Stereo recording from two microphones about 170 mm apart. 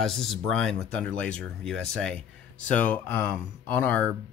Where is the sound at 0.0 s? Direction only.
Centre (ahead or behind).